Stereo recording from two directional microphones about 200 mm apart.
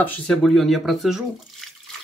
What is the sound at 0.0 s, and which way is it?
Speech, 5° left (ahead or behind).